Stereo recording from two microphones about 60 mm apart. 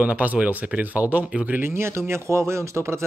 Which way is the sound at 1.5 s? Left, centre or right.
Right.